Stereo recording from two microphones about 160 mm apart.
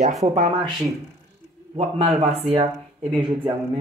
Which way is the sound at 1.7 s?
40° right (ahead or behind).